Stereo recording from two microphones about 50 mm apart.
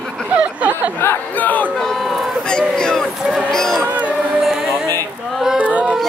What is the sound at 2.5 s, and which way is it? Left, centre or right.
Speech, centre.